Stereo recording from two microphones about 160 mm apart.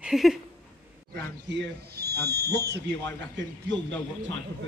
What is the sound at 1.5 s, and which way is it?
Speech, 85° right.